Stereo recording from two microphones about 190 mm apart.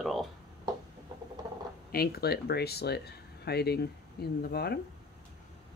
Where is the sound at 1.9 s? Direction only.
55° left (ahead or behind).